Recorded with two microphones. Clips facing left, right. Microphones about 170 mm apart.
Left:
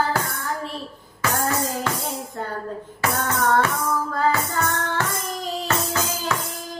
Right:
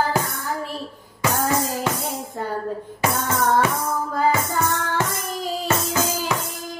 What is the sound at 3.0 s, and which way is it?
Music, 15° right (ahead or behind).